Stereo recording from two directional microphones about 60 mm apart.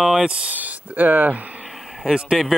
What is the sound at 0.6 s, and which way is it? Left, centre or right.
Speech, right.